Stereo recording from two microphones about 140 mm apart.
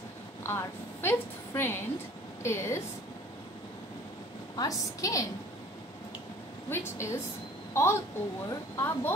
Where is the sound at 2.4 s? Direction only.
20° left (ahead or behind).